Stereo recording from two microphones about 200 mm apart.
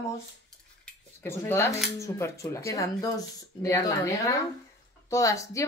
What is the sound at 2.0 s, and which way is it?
Speech, 15° left (ahead or behind).